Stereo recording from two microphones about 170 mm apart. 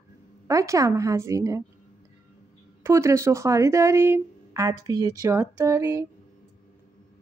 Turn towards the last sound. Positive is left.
turn(degrees=-15)  # may be behind; listen again after turning